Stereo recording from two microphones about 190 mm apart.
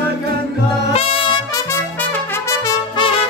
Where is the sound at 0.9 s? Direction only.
30° left (ahead or behind).